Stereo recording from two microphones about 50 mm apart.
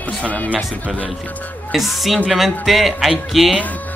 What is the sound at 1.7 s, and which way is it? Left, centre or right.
Speech, centre.